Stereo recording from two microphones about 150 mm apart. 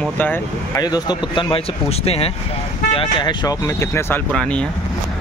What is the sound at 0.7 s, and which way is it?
Speech, 25° left (ahead or behind).